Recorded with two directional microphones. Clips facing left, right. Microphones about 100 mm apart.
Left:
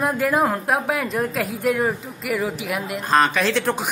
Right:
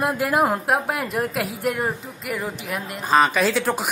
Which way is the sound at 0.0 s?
5° right (ahead or behind).